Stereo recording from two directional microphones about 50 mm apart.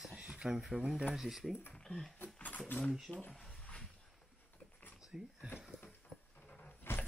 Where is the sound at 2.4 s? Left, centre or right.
Left.